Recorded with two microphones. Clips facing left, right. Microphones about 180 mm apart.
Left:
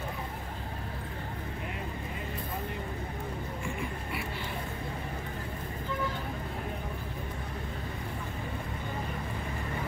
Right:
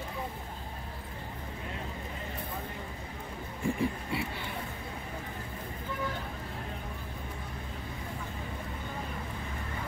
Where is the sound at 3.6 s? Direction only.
30° right (ahead or behind).